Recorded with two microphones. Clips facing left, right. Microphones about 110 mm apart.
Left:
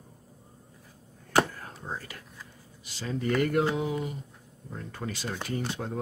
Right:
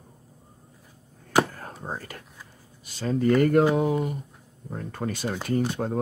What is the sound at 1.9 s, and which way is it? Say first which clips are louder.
Speech: right 2 dB; 45° right (ahead or behind).